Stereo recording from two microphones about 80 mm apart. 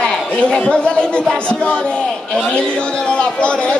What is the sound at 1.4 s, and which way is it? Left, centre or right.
A man's voice, centre.